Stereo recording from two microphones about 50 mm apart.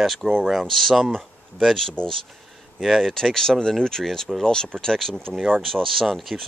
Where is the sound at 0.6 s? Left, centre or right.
Centre.